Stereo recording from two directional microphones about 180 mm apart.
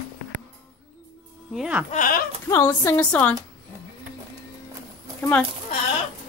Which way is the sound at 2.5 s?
15° left (ahead or behind).